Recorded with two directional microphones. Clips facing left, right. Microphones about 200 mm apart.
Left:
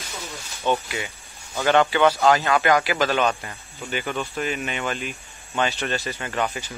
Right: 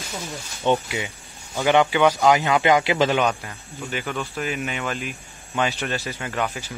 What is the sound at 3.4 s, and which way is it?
Speech, centre (ahead or behind).